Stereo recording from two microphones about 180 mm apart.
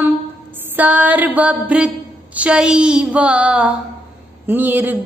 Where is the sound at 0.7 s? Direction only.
10° right (ahead or behind).